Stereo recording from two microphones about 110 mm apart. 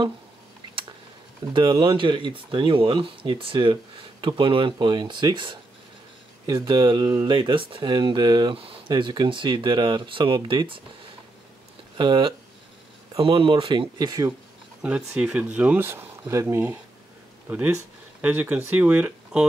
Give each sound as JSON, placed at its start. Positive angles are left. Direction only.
{"t": 1.5, "sound": "speech", "side_deg": -45}
{"t": 6.4, "sound": "speech", "side_deg": -30}
{"t": 6.7, "sound": "speech", "side_deg": -45}
{"t": 12.0, "sound": "speech", "side_deg": -45}
{"t": 13.9, "sound": "speech", "side_deg": -35}
{"t": 14.8, "sound": "speech", "side_deg": -10}